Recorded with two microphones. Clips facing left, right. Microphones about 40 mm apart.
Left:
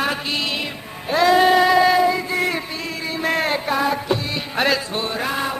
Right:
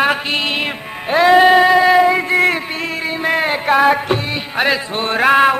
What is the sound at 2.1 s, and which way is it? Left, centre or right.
Speech, right.